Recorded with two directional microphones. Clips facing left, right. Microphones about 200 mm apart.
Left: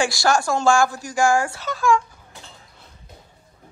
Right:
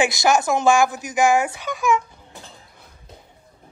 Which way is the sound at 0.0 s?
20° right (ahead or behind).